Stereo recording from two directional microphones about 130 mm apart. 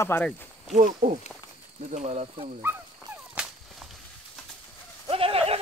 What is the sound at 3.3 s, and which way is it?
Whip, 5° right (ahead or behind).